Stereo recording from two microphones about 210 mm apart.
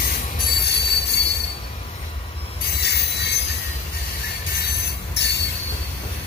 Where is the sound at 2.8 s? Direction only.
50° left (ahead or behind).